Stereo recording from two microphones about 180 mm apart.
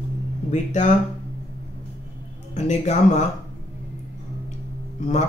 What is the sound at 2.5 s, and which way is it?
Speech, 40° left (ahead or behind).